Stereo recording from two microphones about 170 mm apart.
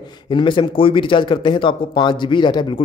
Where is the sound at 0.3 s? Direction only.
30° left (ahead or behind).